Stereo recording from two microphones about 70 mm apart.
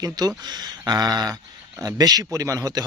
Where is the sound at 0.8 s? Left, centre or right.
Right.